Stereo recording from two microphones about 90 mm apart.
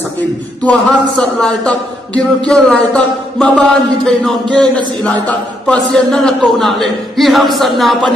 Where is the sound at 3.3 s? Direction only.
10° left (ahead or behind).